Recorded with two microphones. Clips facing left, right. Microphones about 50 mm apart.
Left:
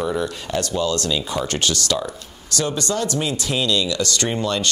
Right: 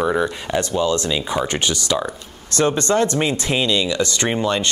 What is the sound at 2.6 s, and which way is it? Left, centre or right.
Speech, right.